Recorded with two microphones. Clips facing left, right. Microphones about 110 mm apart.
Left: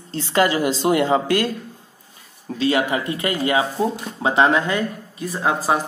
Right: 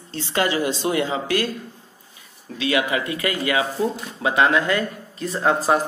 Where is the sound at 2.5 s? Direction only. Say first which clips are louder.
Left 2 dB; 35° left (ahead or behind).